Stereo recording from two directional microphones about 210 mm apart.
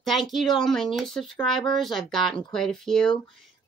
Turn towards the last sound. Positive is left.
turn(degrees=0)  # may be behind; listen again after turning